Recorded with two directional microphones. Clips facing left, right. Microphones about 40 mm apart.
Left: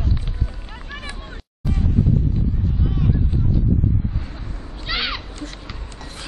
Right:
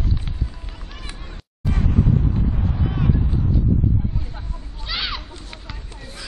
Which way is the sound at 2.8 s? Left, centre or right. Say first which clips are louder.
Right 1 dB; right.